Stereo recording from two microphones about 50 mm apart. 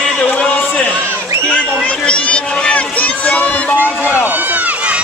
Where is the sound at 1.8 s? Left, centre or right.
Left.